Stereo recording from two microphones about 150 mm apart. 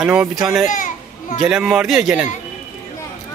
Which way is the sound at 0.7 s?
60° left (ahead or behind).